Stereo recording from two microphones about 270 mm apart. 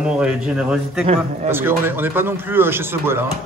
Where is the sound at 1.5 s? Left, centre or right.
Centre.